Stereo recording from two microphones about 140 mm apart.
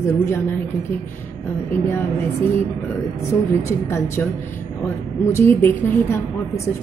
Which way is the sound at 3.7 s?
20° left (ahead or behind).